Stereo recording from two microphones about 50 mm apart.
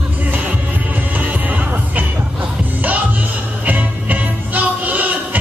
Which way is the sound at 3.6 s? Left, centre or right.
Right.